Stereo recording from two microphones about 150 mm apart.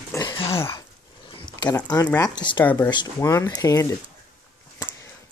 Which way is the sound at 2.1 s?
25° left (ahead or behind).